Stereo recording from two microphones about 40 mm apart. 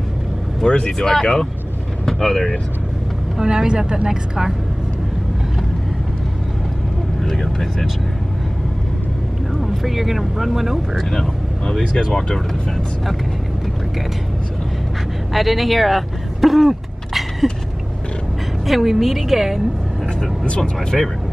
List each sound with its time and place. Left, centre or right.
0.7 s speech: left
3.3 s a woman's voice: centre
7.2 s vehicle: centre
9.6 s speech: centre
11.1 s speech: centre
15.3 s speech: centre
18.7 s speech: centre
20.4 s speech: left